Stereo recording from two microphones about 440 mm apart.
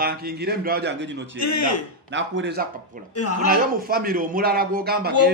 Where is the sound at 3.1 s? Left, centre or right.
Left.